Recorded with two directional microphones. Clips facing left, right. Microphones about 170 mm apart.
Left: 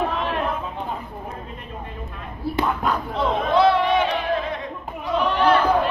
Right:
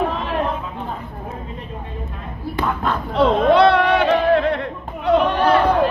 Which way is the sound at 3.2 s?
75° right (ahead or behind).